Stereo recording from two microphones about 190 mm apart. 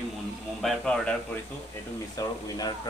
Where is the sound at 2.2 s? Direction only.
20° left (ahead or behind).